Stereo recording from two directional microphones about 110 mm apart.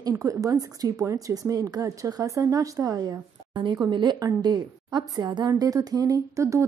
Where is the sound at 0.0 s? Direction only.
30° right (ahead or behind).